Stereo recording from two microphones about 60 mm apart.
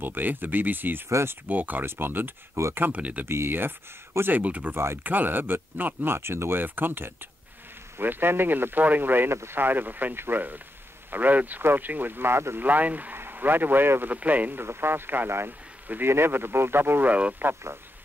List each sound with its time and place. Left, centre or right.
0.0 s speech: right
1.0 s speech: right
1.5 s speech: right
3.0 s speech: right
3.3 s speech: right
4.4 s speech: right
9.3 s speech: right
9.6 s speech: right
12.6 s speech: right
14.6 s speech: right